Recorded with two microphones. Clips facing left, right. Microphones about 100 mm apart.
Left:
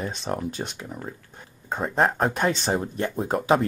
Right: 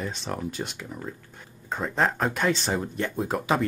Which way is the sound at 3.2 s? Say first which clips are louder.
Left 5 dB; 30° left (ahead or behind).